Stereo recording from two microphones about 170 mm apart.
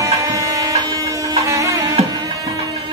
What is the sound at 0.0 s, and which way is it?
Music, 20° right (ahead or behind).